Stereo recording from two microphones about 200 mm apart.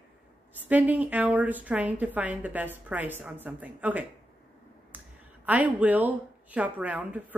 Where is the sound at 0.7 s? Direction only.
10° right (ahead or behind).